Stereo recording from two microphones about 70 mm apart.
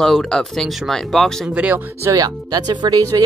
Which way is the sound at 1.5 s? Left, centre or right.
Centre.